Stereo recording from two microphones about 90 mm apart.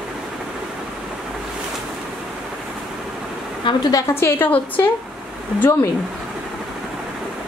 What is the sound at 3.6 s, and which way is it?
Speech, 55° left (ahead or behind).